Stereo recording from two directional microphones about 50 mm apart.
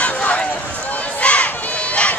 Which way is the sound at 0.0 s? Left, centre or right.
Left.